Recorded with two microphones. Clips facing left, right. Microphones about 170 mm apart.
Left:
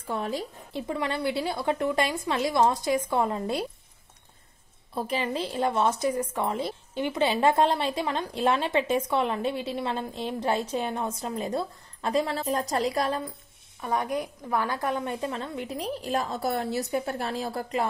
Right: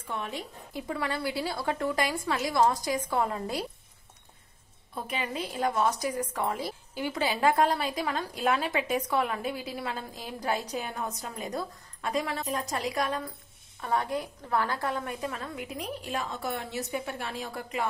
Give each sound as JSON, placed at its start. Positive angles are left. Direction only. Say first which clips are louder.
{"t": 0.0, "sound": "speech", "louder": "left 5 dB", "side_deg": 35}
{"t": 0.8, "sound": "a woman's voice", "louder": "left 3 dB", "side_deg": 20}
{"t": 4.9, "sound": "a woman's voice", "louder": "left 5 dB", "side_deg": 30}
{"t": 13.7, "sound": "a woman's voice", "louder": "left 2 dB", "side_deg": 15}